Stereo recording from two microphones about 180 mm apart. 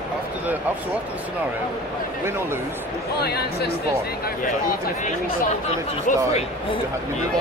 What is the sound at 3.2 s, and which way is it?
Speech, 60° left (ahead or behind).